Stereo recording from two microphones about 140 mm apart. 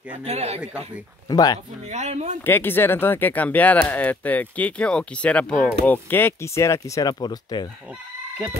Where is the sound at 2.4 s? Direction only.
15° left (ahead or behind); by 7.7 s 30° left (ahead or behind).